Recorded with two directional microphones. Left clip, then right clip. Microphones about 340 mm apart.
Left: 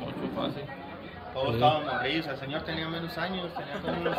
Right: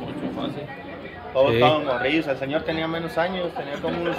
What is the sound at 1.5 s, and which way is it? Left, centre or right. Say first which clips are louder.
A man's voice: right 6 dB; centre.